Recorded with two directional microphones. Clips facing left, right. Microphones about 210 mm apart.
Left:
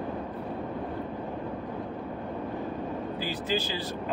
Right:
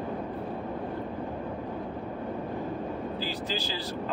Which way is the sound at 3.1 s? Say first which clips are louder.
Left 3 dB; 15° left (ahead or behind).